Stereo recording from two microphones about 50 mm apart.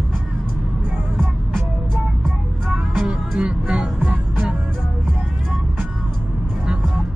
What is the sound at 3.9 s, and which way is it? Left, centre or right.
Music, right.